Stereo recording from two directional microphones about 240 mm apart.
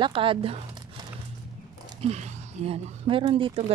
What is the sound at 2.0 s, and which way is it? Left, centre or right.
Speech, right.